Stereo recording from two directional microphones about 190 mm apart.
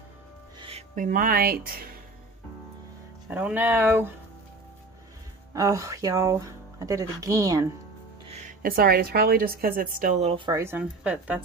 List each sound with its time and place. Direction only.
0.6 s music: 30° right (ahead or behind)
0.9 s a woman's voice: 45° right (ahead or behind)
3.3 s speech: 10° right (ahead or behind)
5.5 s speech: 20° right (ahead or behind)
8.3 s a woman's voice: 40° right (ahead or behind)
10.6 s speech: 10° right (ahead or behind)